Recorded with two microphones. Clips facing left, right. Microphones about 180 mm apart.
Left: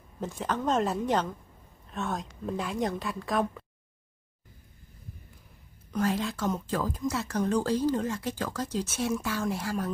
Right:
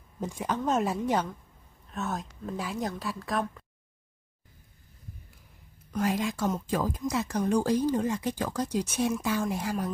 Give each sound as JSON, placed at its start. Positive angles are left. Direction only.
{"t": 0.2, "sound": "a woman's voice", "side_deg": -10}
{"t": 5.9, "sound": "speech", "side_deg": -15}